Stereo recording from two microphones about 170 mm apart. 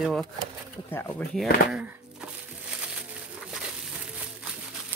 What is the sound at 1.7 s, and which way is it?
Speech, 10° right (ahead or behind).